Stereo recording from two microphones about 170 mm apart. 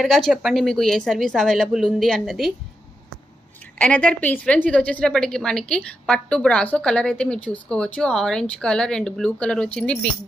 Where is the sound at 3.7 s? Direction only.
5° left (ahead or behind).